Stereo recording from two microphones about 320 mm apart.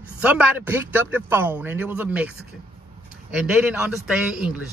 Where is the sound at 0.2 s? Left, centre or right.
Centre.